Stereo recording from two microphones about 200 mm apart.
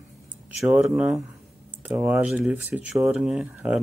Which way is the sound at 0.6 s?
Centre (ahead or behind).